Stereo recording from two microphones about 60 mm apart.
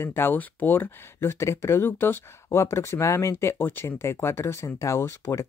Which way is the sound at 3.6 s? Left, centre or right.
Left.